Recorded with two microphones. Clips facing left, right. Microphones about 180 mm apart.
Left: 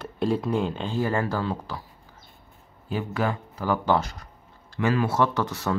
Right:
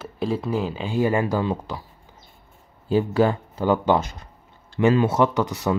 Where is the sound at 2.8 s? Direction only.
30° right (ahead or behind).